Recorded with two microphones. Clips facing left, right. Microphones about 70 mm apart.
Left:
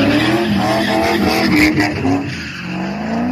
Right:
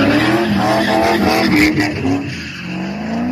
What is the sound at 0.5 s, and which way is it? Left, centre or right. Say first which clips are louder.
Vehicle: right 1 dB; right.